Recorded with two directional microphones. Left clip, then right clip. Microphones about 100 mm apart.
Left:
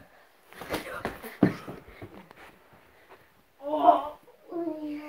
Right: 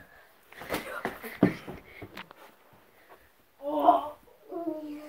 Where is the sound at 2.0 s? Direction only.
20° left (ahead or behind).